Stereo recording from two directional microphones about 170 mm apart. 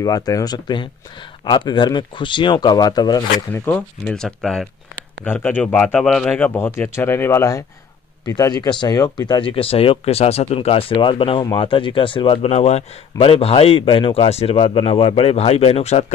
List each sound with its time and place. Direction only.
0.0 s speech: 20° left (ahead or behind)
3.6 s speech: 5° left (ahead or behind); by 16.1 s 40° left (ahead or behind)